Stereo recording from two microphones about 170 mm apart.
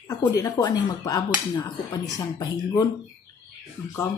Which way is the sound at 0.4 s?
20° left (ahead or behind).